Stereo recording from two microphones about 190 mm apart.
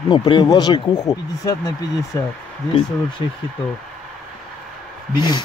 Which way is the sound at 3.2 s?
25° left (ahead or behind).